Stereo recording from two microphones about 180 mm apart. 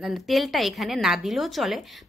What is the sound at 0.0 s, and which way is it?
A woman's voice, centre (ahead or behind).